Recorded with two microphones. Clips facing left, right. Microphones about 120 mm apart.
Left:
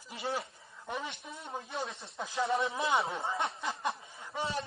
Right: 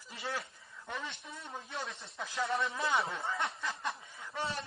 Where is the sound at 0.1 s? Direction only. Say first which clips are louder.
Left 4 dB; 25° left (ahead or behind).